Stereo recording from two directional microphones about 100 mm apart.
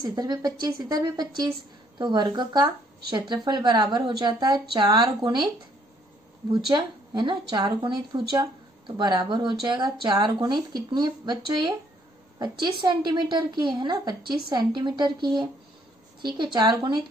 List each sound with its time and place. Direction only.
0.0 s speech: 45° right (ahead or behind)
6.5 s a woman's voice: 50° right (ahead or behind)